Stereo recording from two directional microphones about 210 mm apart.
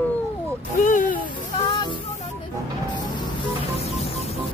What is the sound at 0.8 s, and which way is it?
Music, 40° left (ahead or behind).